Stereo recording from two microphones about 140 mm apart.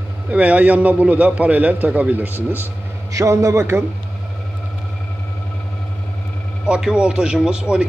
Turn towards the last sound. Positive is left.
turn(degrees=-5)  # may be behind; listen again after turning